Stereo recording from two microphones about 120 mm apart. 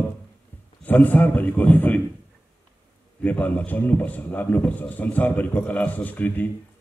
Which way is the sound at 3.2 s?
15° left (ahead or behind).